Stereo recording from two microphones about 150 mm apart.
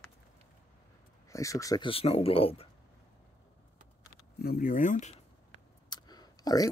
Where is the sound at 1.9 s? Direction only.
40° left (ahead or behind).